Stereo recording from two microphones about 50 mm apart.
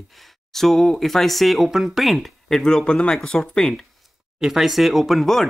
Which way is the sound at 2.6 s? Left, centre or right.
Centre.